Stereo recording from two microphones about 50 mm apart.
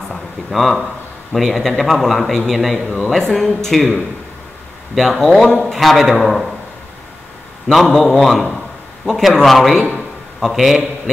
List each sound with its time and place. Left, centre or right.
0.1 s a man's voice: centre
4.9 s a man's voice: centre
7.6 s a man's voice: centre